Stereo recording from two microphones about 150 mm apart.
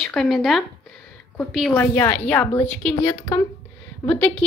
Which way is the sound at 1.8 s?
15° left (ahead or behind).